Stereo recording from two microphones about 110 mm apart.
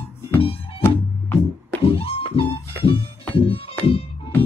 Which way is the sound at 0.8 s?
20° left (ahead or behind).